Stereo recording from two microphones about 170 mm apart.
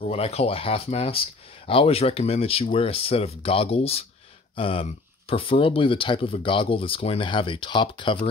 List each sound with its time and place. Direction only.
0.0 s speech: 35° left (ahead or behind)